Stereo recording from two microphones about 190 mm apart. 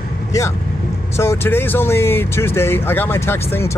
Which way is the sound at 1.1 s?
15° left (ahead or behind).